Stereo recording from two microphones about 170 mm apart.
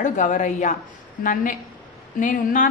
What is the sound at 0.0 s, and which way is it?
A woman's voice, 50° left (ahead or behind).